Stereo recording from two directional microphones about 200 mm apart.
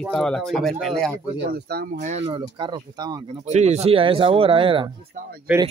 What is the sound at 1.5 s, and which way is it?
Speech, 55° right (ahead or behind).